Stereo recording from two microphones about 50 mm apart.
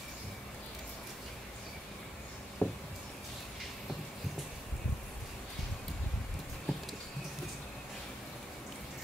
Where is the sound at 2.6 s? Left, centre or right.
Left.